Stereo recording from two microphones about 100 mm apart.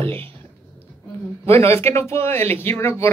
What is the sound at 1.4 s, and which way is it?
Speech, 25° left (ahead or behind).